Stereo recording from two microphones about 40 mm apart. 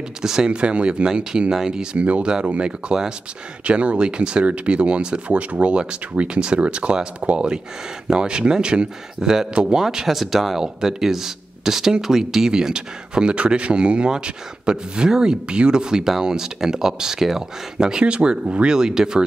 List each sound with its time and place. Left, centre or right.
0.2 s speech: centre
0.5 s speech: right
2.0 s speech: right; by 10.6 s centre
10.6 s speech: centre